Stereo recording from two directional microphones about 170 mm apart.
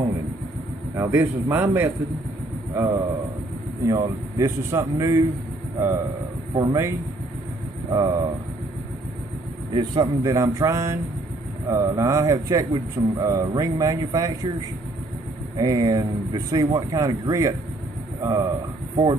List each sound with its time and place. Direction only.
0.9 s speech: 15° right (ahead or behind)
7.9 s speech: 20° right (ahead or behind)
9.8 s speech: 25° right (ahead or behind)
15.5 s speech: 20° right (ahead or behind)